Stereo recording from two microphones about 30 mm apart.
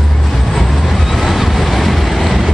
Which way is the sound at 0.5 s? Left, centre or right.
Centre.